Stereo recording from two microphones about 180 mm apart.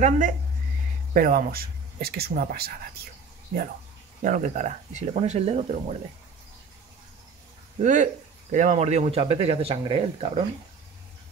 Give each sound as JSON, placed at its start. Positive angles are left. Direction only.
{"t": 1.1, "sound": "speech", "side_deg": -55}
{"t": 4.2, "sound": "speech", "side_deg": -45}
{"t": 7.8, "sound": "speech", "side_deg": -45}